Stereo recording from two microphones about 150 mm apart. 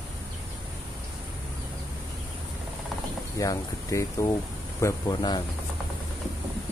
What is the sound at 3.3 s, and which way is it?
Speech, 20° left (ahead or behind).